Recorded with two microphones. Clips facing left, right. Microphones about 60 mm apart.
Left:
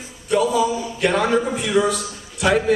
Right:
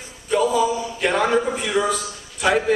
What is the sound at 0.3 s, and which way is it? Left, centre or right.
A man's voice, centre.